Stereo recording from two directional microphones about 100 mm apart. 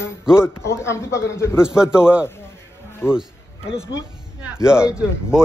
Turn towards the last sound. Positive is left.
turn(degrees=-10)  # may be behind; listen again after turning